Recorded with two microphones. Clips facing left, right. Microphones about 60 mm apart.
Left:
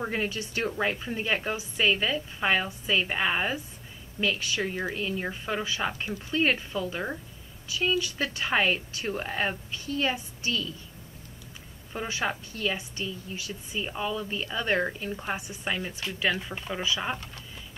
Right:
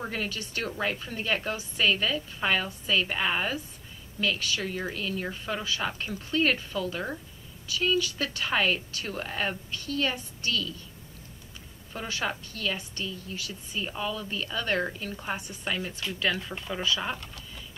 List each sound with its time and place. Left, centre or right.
0.0 s a woman's voice: left
11.9 s a woman's voice: centre